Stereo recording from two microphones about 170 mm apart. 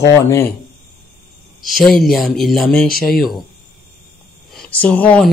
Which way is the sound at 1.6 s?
Centre (ahead or behind).